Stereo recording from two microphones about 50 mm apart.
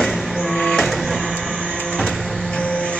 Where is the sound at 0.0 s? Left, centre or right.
Centre.